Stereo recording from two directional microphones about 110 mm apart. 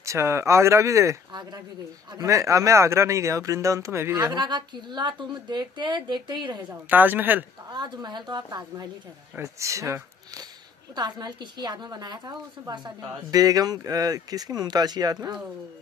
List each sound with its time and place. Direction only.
0.0 s speech: 25° right (ahead or behind)
1.3 s a woman's voice: 40° right (ahead or behind)
2.1 s speech: 30° right (ahead or behind)
4.2 s a woman's voice: 40° right (ahead or behind)
6.7 s speech: 15° right (ahead or behind)
7.7 s a woman's voice: 40° right (ahead or behind)
9.3 s speech: 25° right (ahead or behind)
11.0 s a woman's voice: 40° right (ahead or behind)